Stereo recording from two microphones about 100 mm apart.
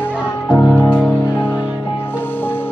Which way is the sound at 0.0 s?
20° left (ahead or behind).